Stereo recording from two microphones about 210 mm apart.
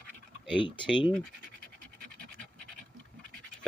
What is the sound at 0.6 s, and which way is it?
Speech, 25° left (ahead or behind).